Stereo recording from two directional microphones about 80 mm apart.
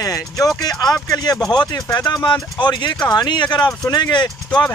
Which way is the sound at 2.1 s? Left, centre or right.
Left.